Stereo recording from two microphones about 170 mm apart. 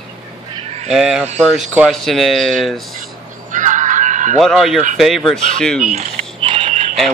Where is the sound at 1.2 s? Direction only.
40° right (ahead or behind).